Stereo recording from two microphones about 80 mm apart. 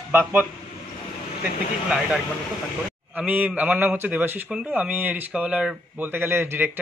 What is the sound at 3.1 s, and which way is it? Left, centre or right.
A man's voice, centre.